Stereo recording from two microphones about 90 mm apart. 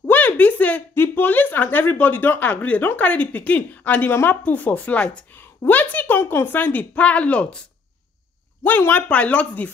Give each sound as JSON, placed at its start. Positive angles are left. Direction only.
{"t": 0.0, "sound": "a woman's voice", "side_deg": 20}
{"t": 8.6, "sound": "speech", "side_deg": 20}